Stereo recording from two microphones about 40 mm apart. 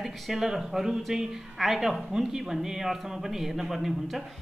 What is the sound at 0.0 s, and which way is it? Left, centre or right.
A woman's voice, centre.